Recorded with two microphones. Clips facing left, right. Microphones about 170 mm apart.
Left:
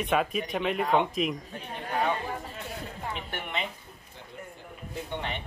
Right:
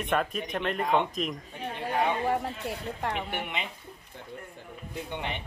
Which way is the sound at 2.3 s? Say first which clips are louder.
Right 7 dB; 70° right (ahead or behind).